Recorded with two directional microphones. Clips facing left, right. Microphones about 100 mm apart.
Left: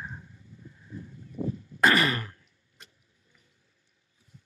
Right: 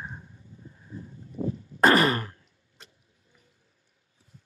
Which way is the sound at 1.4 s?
45° right (ahead or behind).